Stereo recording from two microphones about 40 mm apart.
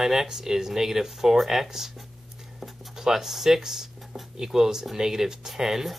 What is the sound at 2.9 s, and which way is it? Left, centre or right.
Speech, centre.